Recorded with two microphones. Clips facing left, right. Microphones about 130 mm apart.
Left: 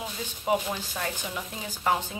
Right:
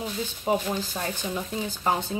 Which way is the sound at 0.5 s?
30° right (ahead or behind).